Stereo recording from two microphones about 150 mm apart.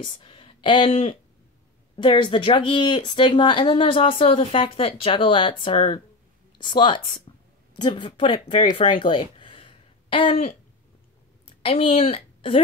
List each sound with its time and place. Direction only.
0.0 s a woman's voice: 35° left (ahead or behind)
11.6 s speech: 40° left (ahead or behind)